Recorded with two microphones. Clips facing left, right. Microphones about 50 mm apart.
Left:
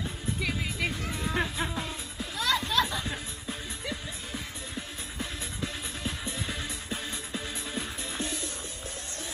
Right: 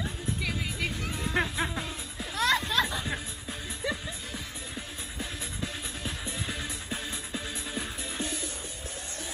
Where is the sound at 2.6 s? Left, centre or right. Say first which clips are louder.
Left 1 dB; right.